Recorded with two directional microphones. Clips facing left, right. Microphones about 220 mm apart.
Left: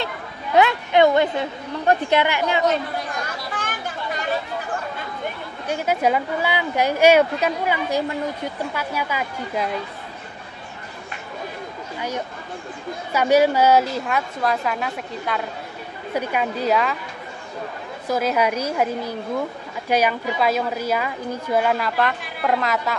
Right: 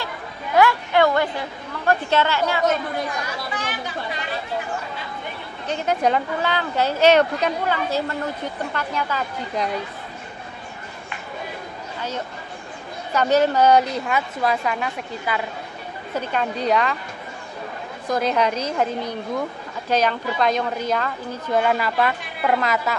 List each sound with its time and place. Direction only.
0.6 s a woman's voice: 20° left (ahead or behind)
3.5 s chatter: 50° left (ahead or behind)
5.7 s speech: 10° left (ahead or behind)
13.1 s a woman's voice: 10° left (ahead or behind)
16.2 s a woman's voice: 10° left (ahead or behind)
18.0 s a woman's voice: 5° left (ahead or behind)